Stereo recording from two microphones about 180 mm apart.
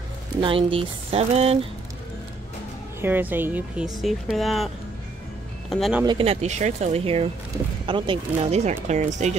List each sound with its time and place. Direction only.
0.4 s speech: 30° right (ahead or behind)
3.0 s speech: 10° right (ahead or behind)
5.7 s speech: centre (ahead or behind)
6.0 s speech: 30° right (ahead or behind)